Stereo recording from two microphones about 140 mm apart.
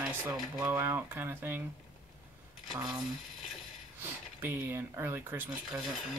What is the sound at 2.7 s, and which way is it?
Speech, 30° right (ahead or behind).